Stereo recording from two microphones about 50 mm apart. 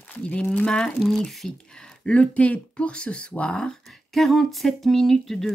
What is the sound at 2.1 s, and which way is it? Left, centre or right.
Speech, left.